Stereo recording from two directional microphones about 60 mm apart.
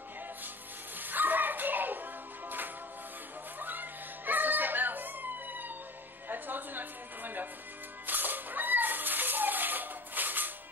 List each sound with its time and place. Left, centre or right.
0.9 s music: right
3.5 s a sound: right
6.2 s music: right
8.1 s cat: right